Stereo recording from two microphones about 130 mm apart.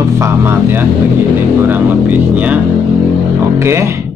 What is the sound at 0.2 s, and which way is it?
A man's voice, 20° right (ahead or behind).